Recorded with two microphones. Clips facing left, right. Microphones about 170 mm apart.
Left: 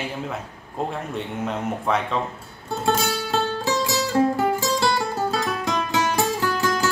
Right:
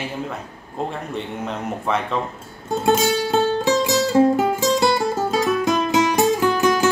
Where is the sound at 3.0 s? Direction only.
15° right (ahead or behind).